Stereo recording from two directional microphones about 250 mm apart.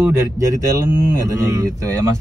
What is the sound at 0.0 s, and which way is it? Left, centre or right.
Speech, centre.